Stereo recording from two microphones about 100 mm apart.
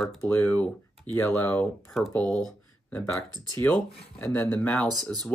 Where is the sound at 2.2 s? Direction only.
5° left (ahead or behind).